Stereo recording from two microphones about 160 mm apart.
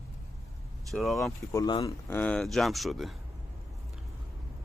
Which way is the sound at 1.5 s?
25° left (ahead or behind).